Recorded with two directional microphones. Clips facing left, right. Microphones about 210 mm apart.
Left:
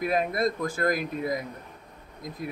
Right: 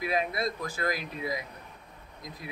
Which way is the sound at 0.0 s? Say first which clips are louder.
Left 4 dB; 50° left (ahead or behind).